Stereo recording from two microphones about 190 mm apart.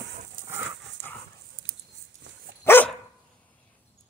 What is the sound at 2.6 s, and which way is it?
Dog, 10° left (ahead or behind).